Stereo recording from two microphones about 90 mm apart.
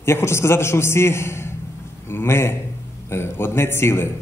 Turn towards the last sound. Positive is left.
turn(degrees=25)  # may be behind; listen again after turning